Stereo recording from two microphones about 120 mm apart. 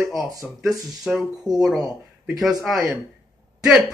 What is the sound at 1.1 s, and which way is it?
Speech, 5° right (ahead or behind).